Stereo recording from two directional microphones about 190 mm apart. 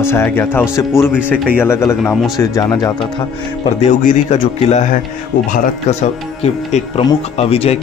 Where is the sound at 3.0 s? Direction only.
30° left (ahead or behind).